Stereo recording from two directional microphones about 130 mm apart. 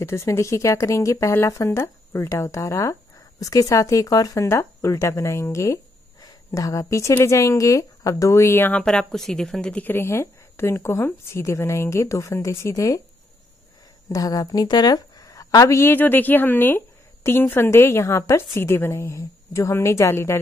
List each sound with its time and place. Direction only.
0.0 s a woman's voice: 20° left (ahead or behind)
14.0 s a woman's voice: 25° left (ahead or behind)